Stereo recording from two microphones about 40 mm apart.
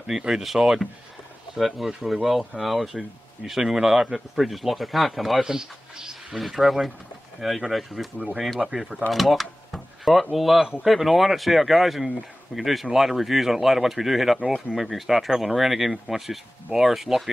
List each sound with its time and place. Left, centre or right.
0.1 s speech: centre
5.4 s speech: centre
6.3 s speech: centre
9.1 s a sound: centre
10.3 s speech: centre